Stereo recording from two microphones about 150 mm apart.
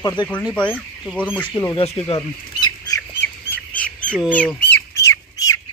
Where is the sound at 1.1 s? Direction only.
10° left (ahead or behind).